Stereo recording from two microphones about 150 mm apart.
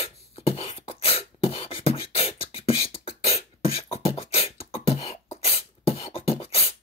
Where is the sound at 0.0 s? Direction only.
40° left (ahead or behind).